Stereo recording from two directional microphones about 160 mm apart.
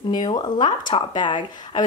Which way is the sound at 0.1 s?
25° left (ahead or behind).